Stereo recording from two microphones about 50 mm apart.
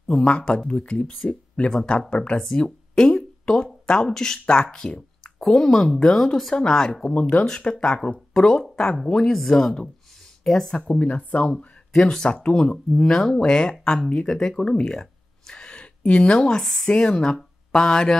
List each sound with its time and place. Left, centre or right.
0.1 s speech: left
2.4 s a sound: centre
3.8 s speech: centre
5.4 s speech: centre
10.7 s speech: left
11.5 s speech: centre
13.5 s speech: centre